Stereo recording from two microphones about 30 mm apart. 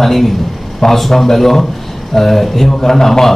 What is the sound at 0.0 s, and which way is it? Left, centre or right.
A man's voice, centre.